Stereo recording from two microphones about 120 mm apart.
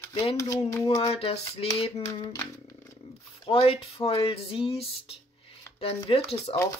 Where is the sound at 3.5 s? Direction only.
50° left (ahead or behind).